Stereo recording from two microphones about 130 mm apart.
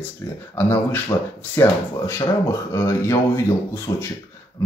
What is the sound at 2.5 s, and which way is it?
Speech, 20° left (ahead or behind).